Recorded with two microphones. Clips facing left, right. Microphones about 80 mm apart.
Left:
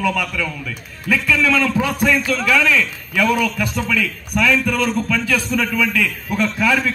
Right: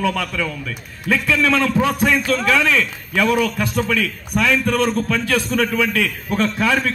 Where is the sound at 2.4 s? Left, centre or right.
Right.